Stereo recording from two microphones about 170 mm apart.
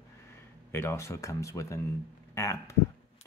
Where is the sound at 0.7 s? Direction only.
15° left (ahead or behind).